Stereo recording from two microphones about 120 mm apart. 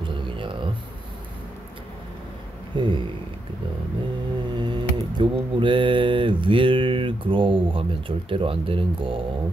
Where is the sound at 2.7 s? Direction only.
40° right (ahead or behind).